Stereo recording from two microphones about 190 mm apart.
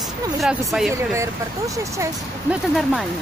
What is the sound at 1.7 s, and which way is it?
Speech, 15° right (ahead or behind).